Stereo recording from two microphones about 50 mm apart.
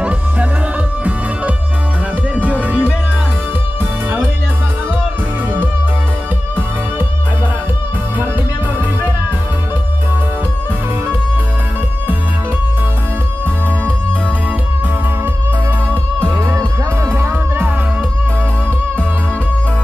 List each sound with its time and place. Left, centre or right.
2.3 s music: right
17.1 s music: right